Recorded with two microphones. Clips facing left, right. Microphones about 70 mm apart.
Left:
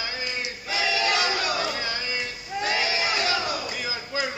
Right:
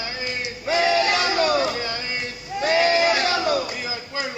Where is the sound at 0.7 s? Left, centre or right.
Right.